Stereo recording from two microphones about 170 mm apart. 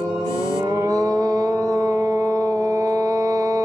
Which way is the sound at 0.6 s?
20° right (ahead or behind).